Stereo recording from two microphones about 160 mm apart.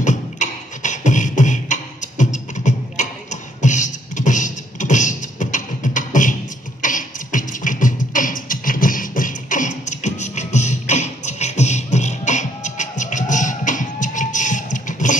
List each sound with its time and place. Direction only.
0.0 s beatboxing: 50° left (ahead or behind)